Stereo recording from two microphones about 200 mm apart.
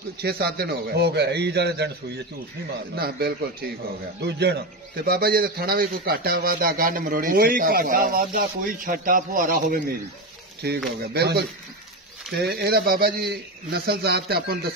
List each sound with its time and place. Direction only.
0.2 s a man's voice: 50° right (ahead or behind)
3.0 s a man's voice: 50° right (ahead or behind)